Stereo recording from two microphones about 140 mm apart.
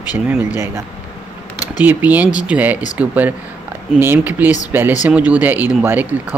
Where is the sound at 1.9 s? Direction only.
10° right (ahead or behind).